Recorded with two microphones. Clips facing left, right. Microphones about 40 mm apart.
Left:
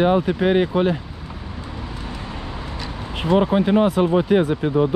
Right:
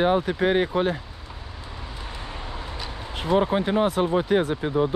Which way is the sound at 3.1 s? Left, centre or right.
Left.